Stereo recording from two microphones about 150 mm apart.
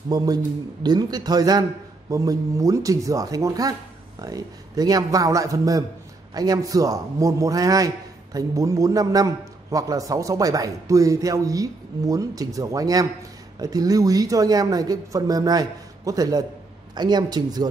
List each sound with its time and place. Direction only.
0.1 s a man's voice: 25° right (ahead or behind)